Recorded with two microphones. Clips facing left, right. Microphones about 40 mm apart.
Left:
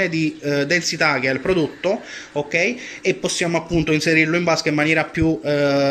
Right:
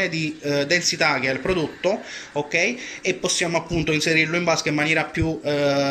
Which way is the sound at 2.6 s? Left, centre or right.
Left.